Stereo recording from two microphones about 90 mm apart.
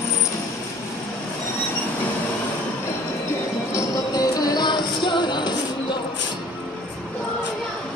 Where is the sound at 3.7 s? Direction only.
45° left (ahead or behind).